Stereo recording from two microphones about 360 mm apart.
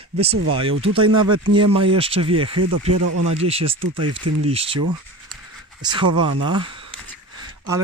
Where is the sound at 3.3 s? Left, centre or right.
Centre.